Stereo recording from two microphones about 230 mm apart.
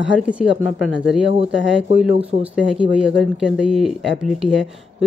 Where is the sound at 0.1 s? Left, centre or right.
Centre.